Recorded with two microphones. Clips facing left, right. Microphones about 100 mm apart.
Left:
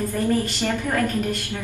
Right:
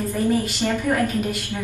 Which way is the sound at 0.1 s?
15° right (ahead or behind).